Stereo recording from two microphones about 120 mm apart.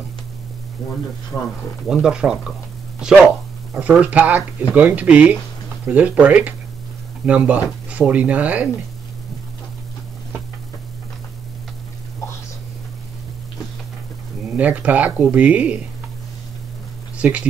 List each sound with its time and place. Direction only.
0.8 s speech: 5° left (ahead or behind)
1.3 s speech: 25° left (ahead or behind)
1.9 s speech: 5° right (ahead or behind)
14.5 s speech: 15° right (ahead or behind)
17.2 s speech: 10° right (ahead or behind)